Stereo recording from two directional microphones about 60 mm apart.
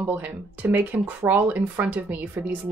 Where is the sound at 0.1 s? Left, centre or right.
Right.